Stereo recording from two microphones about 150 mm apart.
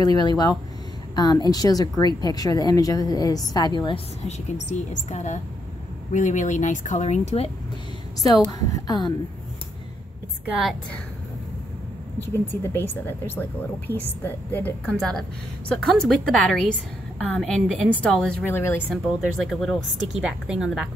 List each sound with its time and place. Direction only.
0.0 s speech: 25° left (ahead or behind)
4.3 s a woman's voice: 50° left (ahead or behind)
8.2 s speech: 25° left (ahead or behind)
10.4 s a woman's voice: 5° right (ahead or behind)
12.2 s speech: 15° left (ahead or behind)
13.9 s a woman's voice: 15° right (ahead or behind)
14.2 s speech: 15° left (ahead or behind)
15.0 s a woman's voice: 5° left (ahead or behind)
19.4 s a woman's voice: centre (ahead or behind)